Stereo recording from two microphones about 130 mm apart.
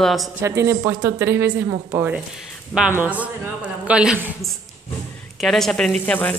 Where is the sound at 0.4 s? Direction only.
20° right (ahead or behind).